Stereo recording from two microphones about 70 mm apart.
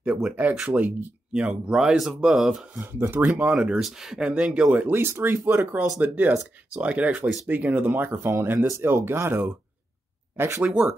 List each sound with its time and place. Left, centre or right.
0.0 s speech: centre
0.7 s speech: right; by 2.6 s centre
3.0 s speech: right
3.5 s speech: centre
4.3 s speech: centre; by 5.8 s right
5.9 s speech: right
10.6 s speech: centre